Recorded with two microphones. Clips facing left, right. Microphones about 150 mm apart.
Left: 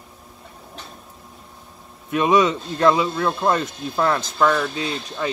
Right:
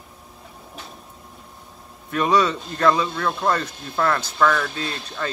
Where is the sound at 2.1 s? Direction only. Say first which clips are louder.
Left 2 dB; 20° left (ahead or behind).